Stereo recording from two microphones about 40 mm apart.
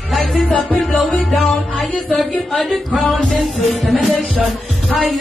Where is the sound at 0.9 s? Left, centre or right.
Centre.